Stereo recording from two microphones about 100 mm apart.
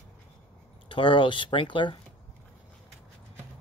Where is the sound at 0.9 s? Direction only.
55° left (ahead or behind).